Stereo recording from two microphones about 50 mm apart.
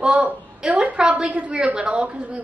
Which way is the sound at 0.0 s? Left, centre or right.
Right.